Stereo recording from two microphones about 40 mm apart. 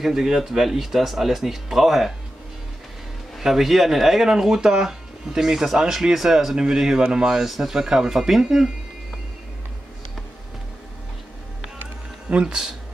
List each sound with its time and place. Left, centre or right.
0.0 s speech: centre
3.3 s speech: centre
7.4 s speech: centre
12.3 s speech: right